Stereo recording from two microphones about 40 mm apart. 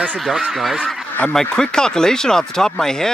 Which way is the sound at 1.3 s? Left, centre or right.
Centre.